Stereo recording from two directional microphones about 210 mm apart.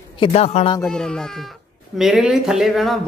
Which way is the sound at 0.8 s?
5° left (ahead or behind).